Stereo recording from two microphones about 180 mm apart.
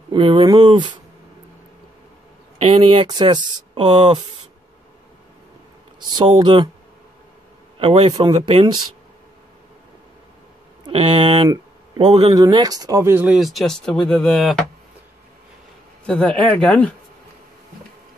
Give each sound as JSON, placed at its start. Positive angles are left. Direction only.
{"t": 0.1, "sound": "speech", "side_deg": -30}
{"t": 2.6, "sound": "speech", "side_deg": -30}
{"t": 5.9, "sound": "speech", "side_deg": -25}
{"t": 7.8, "sound": "speech", "side_deg": -30}
{"t": 10.8, "sound": "speech", "side_deg": -30}
{"t": 11.4, "sound": "a sound", "side_deg": -20}
{"t": 12.1, "sound": "speech", "side_deg": -35}
{"t": 12.4, "sound": "speech", "side_deg": -20}
{"t": 16.1, "sound": "speech", "side_deg": 5}